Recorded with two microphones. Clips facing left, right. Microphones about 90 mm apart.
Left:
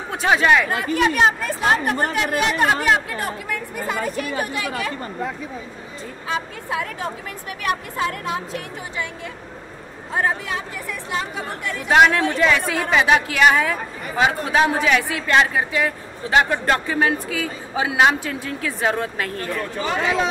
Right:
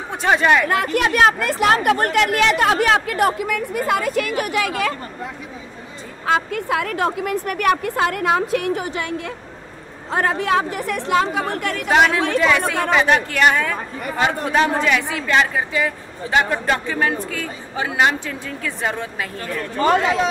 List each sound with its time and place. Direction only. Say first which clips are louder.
0.1 s speech: right 1 dB; centre (ahead or behind)
0.7 s speech: right 1 dB; 65° right (ahead or behind); by 4.9 s 85° right
6.2 s a woman's voice: right 8 dB; 65° right (ahead or behind)
10.1 s a woman's voice: right 5 dB; 70° right (ahead or behind)
12.4 s speech: right 2 dB; centre (ahead or behind)